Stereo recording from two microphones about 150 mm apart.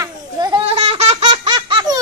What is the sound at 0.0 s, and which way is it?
Goat, 25° right (ahead or behind).